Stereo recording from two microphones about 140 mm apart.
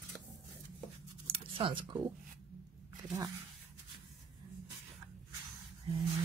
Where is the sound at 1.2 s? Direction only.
40° right (ahead or behind).